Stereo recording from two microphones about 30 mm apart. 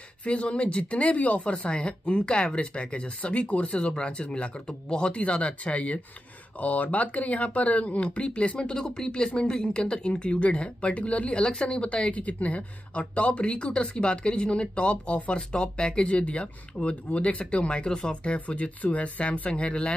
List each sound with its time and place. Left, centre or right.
0.2 s speech: left
3.8 s speech: left
5.2 s speech: left
6.6 s speech: left
8.5 s speech: left
11.3 s speech: left
11.8 s speech: left
15.5 s speech: left
18.8 s speech: left